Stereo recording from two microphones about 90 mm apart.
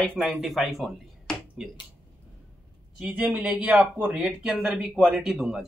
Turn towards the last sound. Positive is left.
turn(degrees=-5)  # may be behind; listen again after turning